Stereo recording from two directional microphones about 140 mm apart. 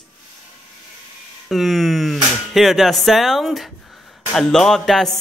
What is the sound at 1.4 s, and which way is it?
Speech, centre (ahead or behind).